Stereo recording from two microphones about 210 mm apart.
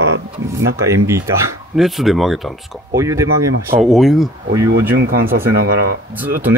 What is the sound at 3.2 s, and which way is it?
Speech, 80° right.